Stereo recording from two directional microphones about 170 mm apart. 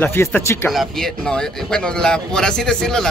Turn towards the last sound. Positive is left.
turn(degrees=5)  # may be behind; listen again after turning